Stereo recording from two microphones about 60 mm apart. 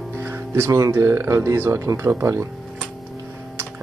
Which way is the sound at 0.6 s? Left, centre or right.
Right.